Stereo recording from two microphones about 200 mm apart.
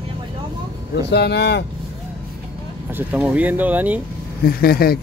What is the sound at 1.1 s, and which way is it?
Speech, 55° left (ahead or behind).